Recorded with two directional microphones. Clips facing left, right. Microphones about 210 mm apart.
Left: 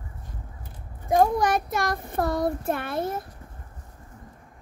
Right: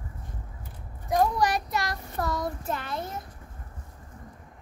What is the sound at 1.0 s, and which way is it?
Child singing, 50° left (ahead or behind).